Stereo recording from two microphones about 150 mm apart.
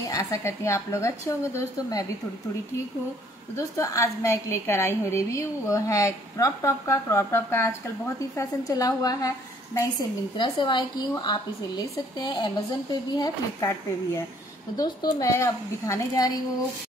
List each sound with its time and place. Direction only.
0.1 s a woman's voice: 20° left (ahead or behind)
3.5 s a woman's voice: 20° left (ahead or behind)